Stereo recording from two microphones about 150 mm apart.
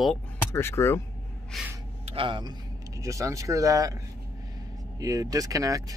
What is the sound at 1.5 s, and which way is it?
Gasp, centre (ahead or behind).